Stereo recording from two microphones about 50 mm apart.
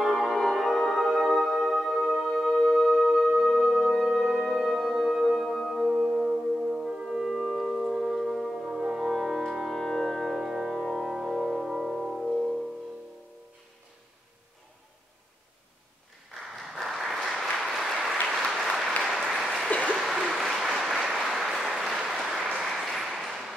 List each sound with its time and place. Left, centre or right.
0.0 s music: centre
5.9 s music: centre
7.2 s singing bowl: centre
7.7 s brass instrument: centre
9.5 s music: centre
10.8 s music: centre
16.8 s applause: centre
18.9 s applause: centre
19.2 s applause: centre